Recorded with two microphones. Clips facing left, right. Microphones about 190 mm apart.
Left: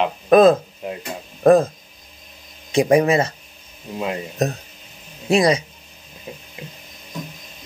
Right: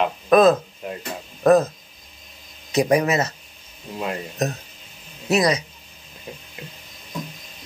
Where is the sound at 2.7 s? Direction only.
30° left (ahead or behind).